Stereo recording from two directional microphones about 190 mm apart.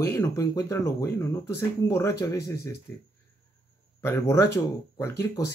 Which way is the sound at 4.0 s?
15° left (ahead or behind).